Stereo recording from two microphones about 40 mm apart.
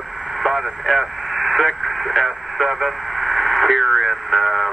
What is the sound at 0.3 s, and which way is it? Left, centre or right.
Speech, centre.